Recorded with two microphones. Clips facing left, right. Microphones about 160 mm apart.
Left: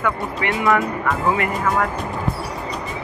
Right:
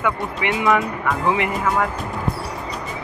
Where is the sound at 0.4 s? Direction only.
20° right (ahead or behind).